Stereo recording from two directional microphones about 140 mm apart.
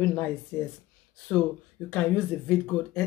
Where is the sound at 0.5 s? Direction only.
10° left (ahead or behind).